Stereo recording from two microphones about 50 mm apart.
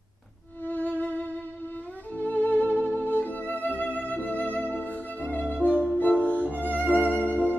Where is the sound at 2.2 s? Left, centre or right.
Left.